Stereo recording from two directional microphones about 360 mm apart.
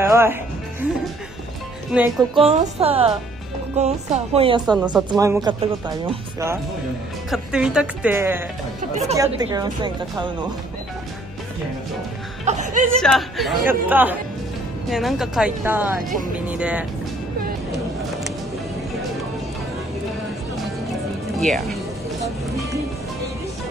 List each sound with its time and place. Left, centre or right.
0.0 s music: centre
2.0 s speech: centre
12.4 s speech: centre
13.0 s speech: centre